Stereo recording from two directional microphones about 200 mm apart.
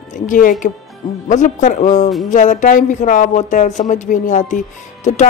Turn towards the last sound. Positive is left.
turn(degrees=35)  # may be behind; listen again after turning